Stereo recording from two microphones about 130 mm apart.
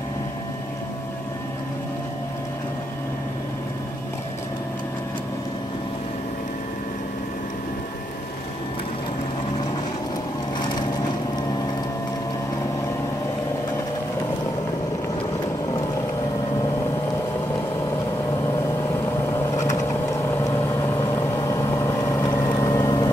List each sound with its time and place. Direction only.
19.3 s vehicle: 20° left (ahead or behind)
22.5 s boat: 25° left (ahead or behind)